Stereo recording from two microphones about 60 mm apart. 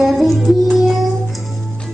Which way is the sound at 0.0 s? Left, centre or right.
Centre.